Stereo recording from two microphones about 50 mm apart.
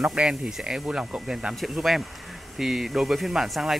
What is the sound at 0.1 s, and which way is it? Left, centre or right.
Speech, centre.